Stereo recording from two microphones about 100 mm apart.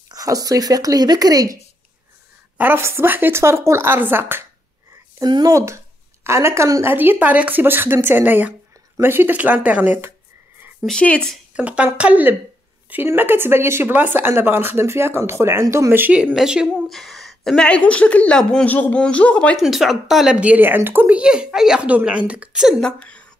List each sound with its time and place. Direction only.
0.1 s speech: 35° right (ahead or behind)
2.5 s speech: 20° right (ahead or behind)
5.2 s speech: 40° right (ahead or behind); by 9.9 s 15° right (ahead or behind)
10.8 s a woman's voice: 10° left (ahead or behind)
11.5 s speech: 10° right (ahead or behind)
16.2 s speech: 10° right (ahead or behind)
16.9 s a woman's voice: centre (ahead or behind)
19.5 s speech: centre (ahead or behind)
22.8 s a woman's voice: 10° left (ahead or behind)